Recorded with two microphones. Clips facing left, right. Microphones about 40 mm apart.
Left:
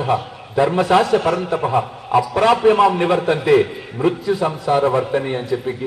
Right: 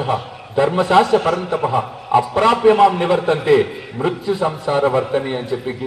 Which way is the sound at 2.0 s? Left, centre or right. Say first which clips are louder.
Right 1 dB; right.